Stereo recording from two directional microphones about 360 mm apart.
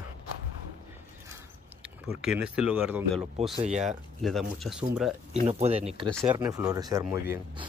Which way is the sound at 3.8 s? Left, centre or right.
Centre.